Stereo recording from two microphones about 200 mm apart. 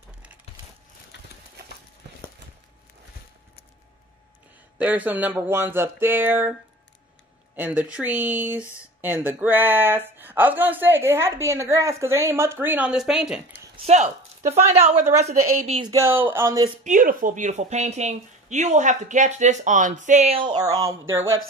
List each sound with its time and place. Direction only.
4.7 s speech: 10° right (ahead or behind)
7.5 s speech: 5° right (ahead or behind)
13.8 s speech: 35° right (ahead or behind)
15.9 s speech: 15° right (ahead or behind)
16.8 s speech: 40° right (ahead or behind)
20.4 s speech: 20° right (ahead or behind)